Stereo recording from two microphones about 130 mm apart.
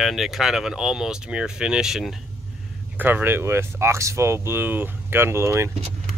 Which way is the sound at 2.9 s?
15° right (ahead or behind).